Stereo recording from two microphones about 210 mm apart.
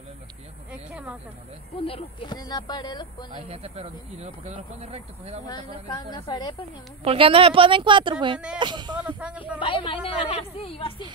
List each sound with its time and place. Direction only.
0.7 s a sound: 5° right (ahead or behind)
1.8 s speech: 25° left (ahead or behind)
3.4 s speech: 30° right (ahead or behind)
5.5 s speech: 20° left (ahead or behind)
7.1 s speech: 25° right (ahead or behind)
9.0 s speech: 5° right (ahead or behind)
9.6 s speech: 25° left (ahead or behind)